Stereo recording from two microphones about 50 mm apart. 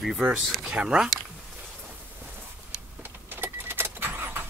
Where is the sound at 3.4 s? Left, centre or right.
Right.